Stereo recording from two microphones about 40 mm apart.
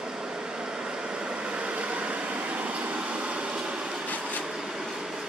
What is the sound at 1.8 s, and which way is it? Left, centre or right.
Vehicle, right.